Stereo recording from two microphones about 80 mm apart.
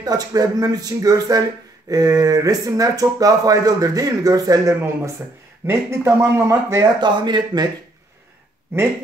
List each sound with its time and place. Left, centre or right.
0.0 s speech: right
5.7 s speech: right
7.0 s speech: right